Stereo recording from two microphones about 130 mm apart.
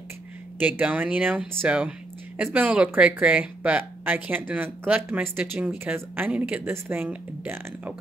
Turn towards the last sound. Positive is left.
turn(degrees=-15)  # may be behind; listen again after turning